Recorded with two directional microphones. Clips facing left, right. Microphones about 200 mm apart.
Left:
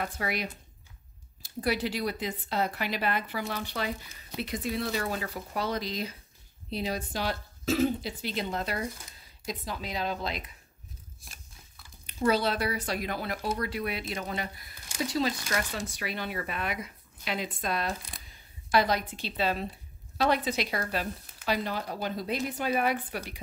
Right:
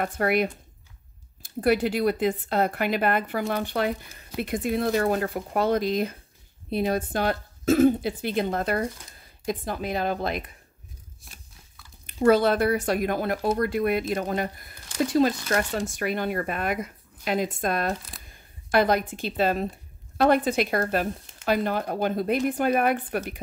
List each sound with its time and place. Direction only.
0.0 s speech: 55° right (ahead or behind)
12.1 s speech: 50° right (ahead or behind)